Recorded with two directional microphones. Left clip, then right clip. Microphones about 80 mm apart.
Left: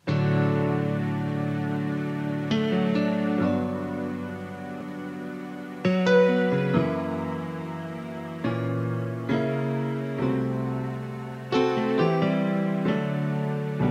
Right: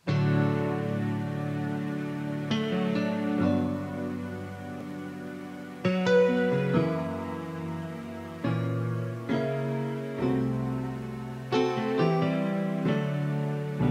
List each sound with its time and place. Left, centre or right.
0.1 s music: left
5.8 s music: left
8.4 s music: left